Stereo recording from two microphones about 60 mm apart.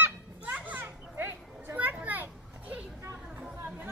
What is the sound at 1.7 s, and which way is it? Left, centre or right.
Children playing, right.